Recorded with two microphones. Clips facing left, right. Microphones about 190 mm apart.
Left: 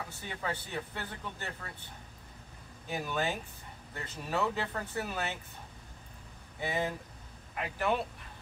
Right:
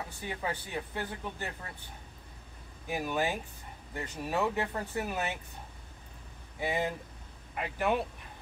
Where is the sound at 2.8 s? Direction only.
15° right (ahead or behind).